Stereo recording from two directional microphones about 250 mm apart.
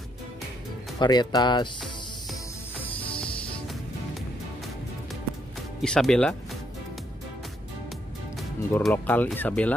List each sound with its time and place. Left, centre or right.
0.9 s speech: centre
2.8 s music: centre
5.8 s speech: centre
8.4 s speech: centre